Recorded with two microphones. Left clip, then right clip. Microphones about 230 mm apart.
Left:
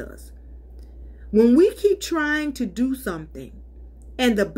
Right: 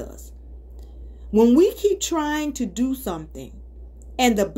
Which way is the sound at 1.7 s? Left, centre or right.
Centre.